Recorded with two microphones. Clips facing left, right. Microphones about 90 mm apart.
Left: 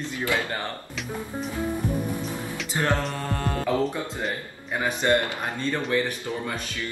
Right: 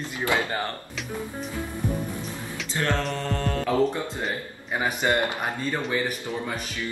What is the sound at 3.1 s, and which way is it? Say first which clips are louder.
Mantra: right 1 dB; 10° left (ahead or behind).